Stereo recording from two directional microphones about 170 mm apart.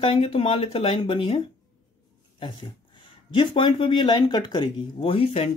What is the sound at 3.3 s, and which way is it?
Speech, 30° left (ahead or behind).